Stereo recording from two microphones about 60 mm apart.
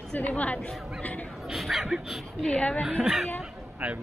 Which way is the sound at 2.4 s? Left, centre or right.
Centre.